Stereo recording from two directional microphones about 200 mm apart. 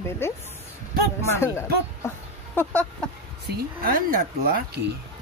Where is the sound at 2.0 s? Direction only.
10° left (ahead or behind).